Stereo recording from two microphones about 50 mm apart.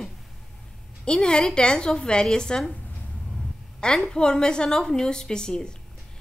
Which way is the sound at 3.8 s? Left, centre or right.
Centre.